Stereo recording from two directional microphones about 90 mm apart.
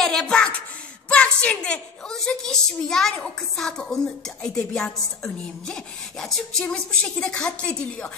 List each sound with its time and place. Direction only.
0.0 s a woman's voice: 5° left (ahead or behind)